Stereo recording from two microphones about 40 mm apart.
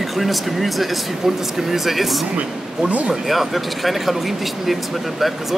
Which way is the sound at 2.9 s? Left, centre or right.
Right.